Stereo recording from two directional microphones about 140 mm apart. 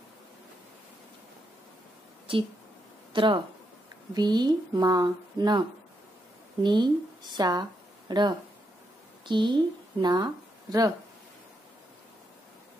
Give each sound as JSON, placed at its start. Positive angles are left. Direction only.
{"t": 3.1, "sound": "a sound", "side_deg": -35}
{"t": 4.1, "sound": "a woman's voice", "side_deg": -30}
{"t": 6.6, "sound": "speech", "side_deg": -35}